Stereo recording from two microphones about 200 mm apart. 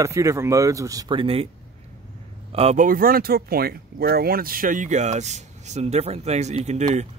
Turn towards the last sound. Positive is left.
turn(degrees=-35)  # may be behind; listen again after turning